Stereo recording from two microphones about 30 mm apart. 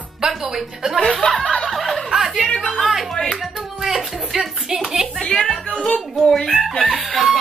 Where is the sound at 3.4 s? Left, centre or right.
Centre.